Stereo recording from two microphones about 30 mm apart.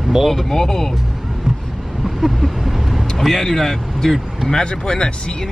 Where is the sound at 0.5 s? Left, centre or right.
Centre.